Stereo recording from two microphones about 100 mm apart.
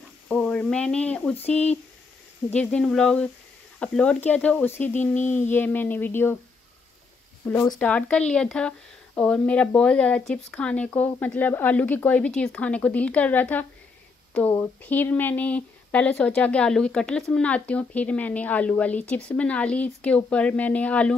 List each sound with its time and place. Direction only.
0.3 s speech: 10° left (ahead or behind)
2.5 s speech: 10° left (ahead or behind)
7.8 s speech: 10° left (ahead or behind)